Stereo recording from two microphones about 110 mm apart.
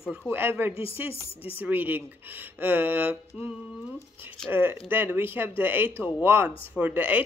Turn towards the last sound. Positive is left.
turn(degrees=-15)  # may be behind; listen again after turning